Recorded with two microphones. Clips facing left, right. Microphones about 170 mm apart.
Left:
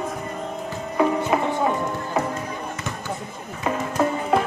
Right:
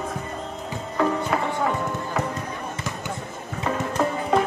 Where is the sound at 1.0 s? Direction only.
15° left (ahead or behind).